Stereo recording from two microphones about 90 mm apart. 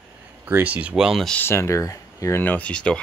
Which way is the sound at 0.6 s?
15° right (ahead or behind).